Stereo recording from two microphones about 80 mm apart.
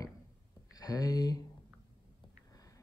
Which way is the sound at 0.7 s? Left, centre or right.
Left.